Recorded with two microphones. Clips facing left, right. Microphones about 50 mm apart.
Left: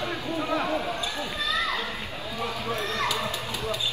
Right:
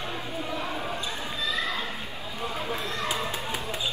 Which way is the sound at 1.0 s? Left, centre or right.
Left.